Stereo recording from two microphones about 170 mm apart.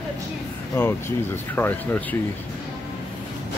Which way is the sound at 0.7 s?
15° left (ahead or behind).